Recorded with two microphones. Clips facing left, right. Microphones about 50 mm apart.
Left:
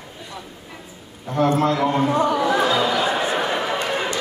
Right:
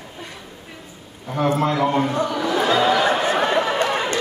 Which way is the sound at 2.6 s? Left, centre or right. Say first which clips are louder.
Right 2 dB; right.